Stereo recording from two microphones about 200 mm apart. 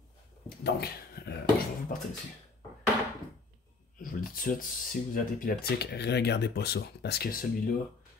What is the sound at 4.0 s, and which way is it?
Speech, 45° left (ahead or behind).